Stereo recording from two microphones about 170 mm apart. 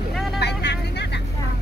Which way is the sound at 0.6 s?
85° left.